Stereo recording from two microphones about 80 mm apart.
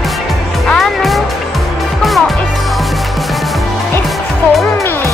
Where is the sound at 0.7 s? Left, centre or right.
Centre.